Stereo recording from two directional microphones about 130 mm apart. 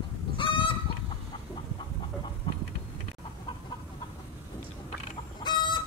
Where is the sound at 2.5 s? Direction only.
35° left (ahead or behind).